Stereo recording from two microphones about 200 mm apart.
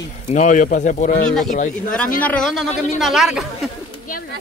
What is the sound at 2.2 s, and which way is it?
Speech, 5° left (ahead or behind).